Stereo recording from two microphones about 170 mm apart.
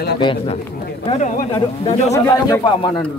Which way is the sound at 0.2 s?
30° left (ahead or behind).